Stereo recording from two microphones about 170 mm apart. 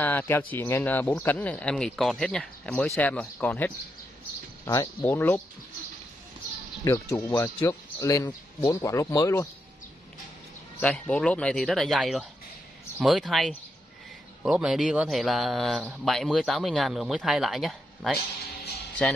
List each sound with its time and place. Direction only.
0.0 s speech: 10° left (ahead or behind)
5.0 s speech: 10° left (ahead or behind)
6.8 s speech: 15° left (ahead or behind)
10.8 s a man's voice: 5° left (ahead or behind)